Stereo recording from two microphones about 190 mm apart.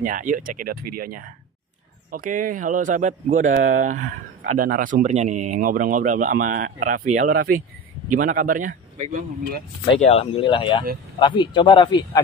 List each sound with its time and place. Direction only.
0.0 s speech: 45° right (ahead or behind)
9.8 s speech: 30° left (ahead or behind)